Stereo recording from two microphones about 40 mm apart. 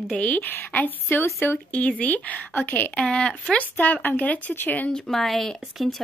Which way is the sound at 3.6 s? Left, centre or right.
Left.